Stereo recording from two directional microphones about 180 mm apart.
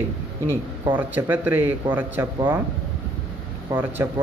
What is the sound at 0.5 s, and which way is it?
A man's voice, 10° right (ahead or behind).